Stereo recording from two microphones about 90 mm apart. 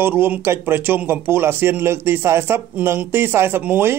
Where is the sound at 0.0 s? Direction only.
20° right (ahead or behind).